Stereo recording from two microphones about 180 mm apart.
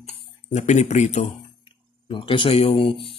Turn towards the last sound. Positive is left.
turn(degrees=30)  # may be behind; listen again after turning